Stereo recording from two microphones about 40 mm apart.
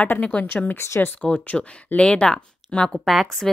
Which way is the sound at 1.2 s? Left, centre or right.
Left.